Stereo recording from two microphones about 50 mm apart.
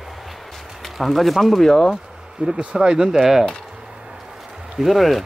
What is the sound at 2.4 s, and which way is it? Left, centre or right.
Speech, right.